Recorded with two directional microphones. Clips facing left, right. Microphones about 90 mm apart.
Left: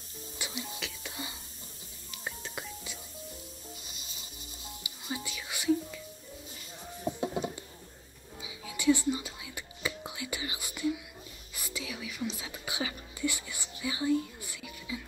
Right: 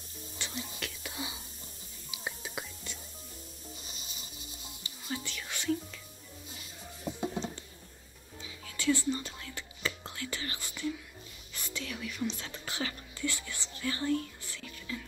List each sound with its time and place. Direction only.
0.4 s whispering: 5° left (ahead or behind)
4.8 s whispering: 15° left (ahead or behind)
7.2 s a sound: 10° left (ahead or behind)
8.4 s whispering: 10° left (ahead or behind)